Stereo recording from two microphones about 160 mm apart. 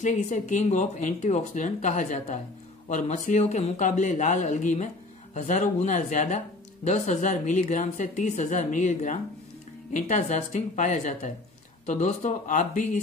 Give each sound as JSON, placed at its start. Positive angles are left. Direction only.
{"t": 0.3, "sound": "speech", "side_deg": 50}